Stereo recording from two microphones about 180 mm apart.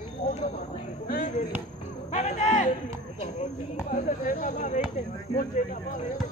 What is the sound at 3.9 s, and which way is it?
Speech, 45° left (ahead or behind).